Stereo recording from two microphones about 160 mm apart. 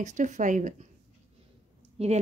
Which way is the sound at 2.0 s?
40° right (ahead or behind).